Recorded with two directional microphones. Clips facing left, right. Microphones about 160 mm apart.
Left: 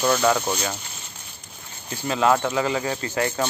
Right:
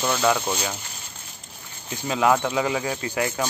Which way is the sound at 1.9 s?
15° right (ahead or behind).